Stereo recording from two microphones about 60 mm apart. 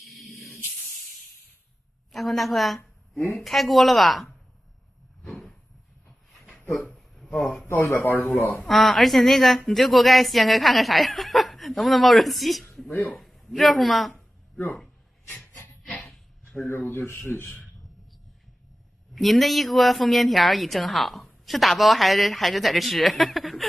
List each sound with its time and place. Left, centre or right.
0.0 s spray: centre
2.1 s a woman's voice: centre
7.2 s speech: centre
7.9 s a man's voice: left
8.6 s a woman's voice: centre
15.8 s a sound: centre
16.6 s a man's voice: left
19.1 s a woman's voice: centre